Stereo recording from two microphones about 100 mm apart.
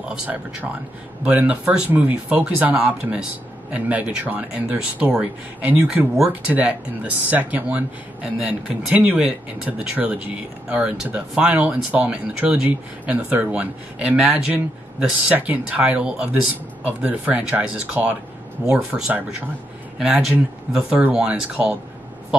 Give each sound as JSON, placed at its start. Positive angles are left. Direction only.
{"t": 0.1, "sound": "speech", "side_deg": -10}